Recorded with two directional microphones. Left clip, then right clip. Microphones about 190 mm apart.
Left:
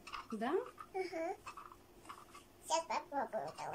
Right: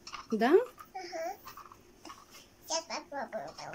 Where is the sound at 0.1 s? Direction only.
5° left (ahead or behind).